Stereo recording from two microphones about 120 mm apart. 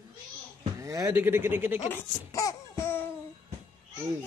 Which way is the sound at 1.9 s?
25° left (ahead or behind).